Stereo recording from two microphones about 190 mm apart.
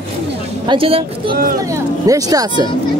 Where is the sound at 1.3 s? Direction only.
50° right (ahead or behind).